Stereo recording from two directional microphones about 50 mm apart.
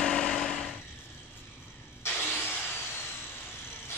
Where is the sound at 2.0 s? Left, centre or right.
Left.